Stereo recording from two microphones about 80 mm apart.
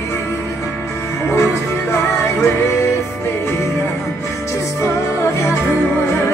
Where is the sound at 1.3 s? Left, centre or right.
Left.